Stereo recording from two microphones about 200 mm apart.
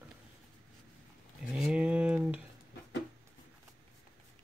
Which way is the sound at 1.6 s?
5° right (ahead or behind).